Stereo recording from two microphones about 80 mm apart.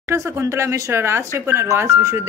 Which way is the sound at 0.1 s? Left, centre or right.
Right.